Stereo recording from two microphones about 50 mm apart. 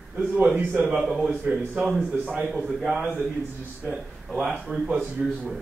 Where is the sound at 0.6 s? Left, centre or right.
Right.